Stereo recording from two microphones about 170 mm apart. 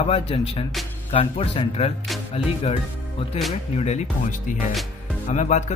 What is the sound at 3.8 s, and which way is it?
Speech, 40° left (ahead or behind).